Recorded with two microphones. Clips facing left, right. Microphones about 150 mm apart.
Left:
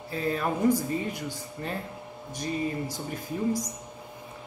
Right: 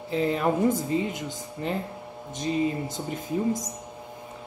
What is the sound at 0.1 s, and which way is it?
Speech, 20° right (ahead or behind).